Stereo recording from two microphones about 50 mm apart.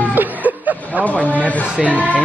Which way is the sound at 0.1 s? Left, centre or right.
Right.